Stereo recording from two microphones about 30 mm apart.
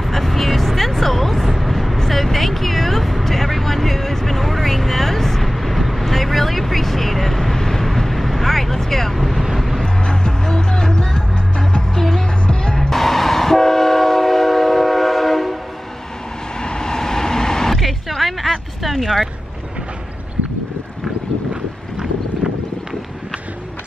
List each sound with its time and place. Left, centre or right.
0.1 s speech: centre
10.4 s music: left
11.9 s music: centre
12.4 s music: left
12.9 s train: centre
16.5 s vehicle: left; by 17.9 s centre
18.0 s a sound: centre
18.8 s speech: centre